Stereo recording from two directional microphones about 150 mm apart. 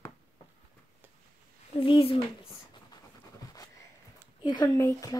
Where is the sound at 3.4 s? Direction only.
25° left (ahead or behind).